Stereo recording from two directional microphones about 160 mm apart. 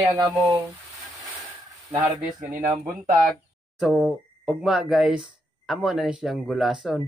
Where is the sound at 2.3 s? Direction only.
55° right (ahead or behind).